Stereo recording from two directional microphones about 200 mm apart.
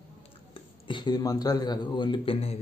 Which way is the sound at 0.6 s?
25° left (ahead or behind).